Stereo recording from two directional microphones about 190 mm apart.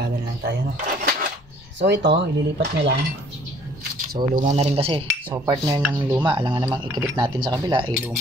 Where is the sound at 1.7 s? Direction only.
65° right (ahead or behind).